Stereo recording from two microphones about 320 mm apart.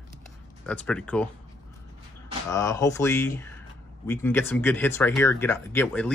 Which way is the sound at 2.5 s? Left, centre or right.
Centre.